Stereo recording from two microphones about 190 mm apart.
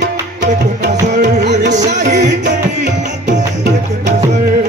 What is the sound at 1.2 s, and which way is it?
Music, 65° right (ahead or behind).